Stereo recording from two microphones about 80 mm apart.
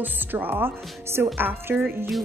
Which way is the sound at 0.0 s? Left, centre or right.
Right.